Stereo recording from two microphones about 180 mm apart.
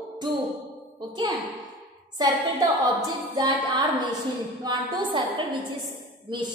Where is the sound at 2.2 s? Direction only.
25° right (ahead or behind).